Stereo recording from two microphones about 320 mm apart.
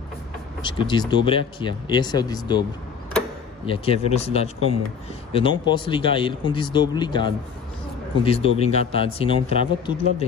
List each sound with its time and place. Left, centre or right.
0.6 s speech: centre
3.6 s speech: centre